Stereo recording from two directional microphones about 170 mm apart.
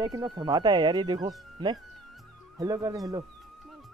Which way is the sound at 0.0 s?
20° right (ahead or behind).